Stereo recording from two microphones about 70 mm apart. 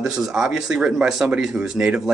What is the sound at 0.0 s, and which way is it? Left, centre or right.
Speech, centre.